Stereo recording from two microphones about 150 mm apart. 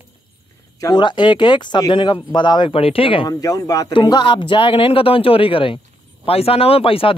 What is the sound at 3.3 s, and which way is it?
Speech, 25° left (ahead or behind).